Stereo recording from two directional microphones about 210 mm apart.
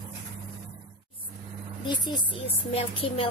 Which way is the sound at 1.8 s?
20° left (ahead or behind).